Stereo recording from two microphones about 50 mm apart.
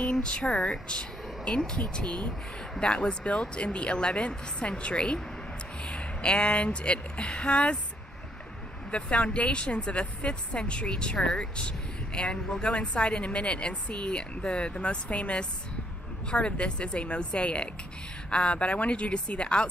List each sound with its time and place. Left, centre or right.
0.1 s speech: centre
8.9 s speech: left